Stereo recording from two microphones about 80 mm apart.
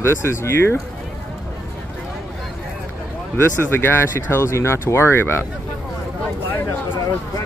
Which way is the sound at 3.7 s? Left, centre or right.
Left.